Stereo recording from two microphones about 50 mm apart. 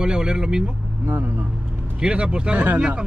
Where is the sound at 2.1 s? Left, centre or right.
Right.